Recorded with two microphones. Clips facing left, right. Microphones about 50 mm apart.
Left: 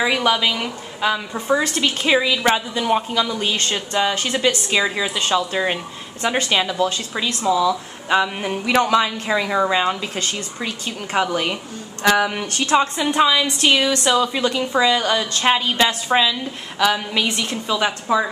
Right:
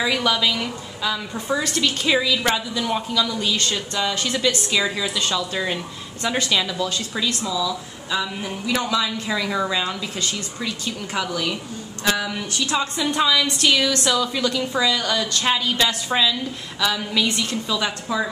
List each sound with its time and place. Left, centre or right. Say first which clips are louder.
0.0 s speech: left 3 dB; left
7.4 s speech: left 7 dB; left